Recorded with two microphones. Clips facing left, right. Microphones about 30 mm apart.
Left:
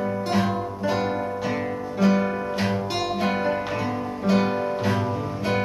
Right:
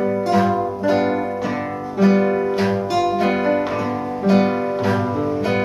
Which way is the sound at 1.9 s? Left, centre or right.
Centre.